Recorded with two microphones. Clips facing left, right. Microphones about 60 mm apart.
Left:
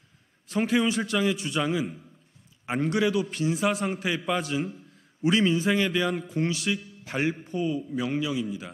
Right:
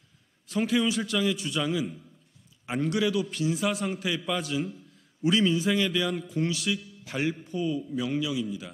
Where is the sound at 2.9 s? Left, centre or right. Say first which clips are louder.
Left 2 dB; left.